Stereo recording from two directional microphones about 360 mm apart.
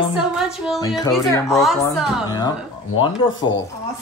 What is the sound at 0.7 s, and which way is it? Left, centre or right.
Speech, centre.